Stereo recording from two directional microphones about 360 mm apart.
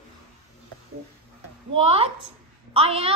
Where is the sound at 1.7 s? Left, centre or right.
Centre.